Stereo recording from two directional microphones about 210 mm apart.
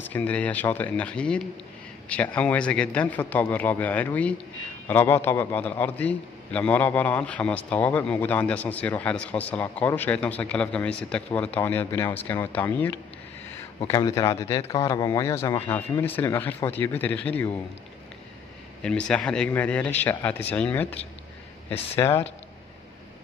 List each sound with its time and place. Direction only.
0.1 s a man's voice: 5° left (ahead or behind)
18.8 s a man's voice: 5° left (ahead or behind)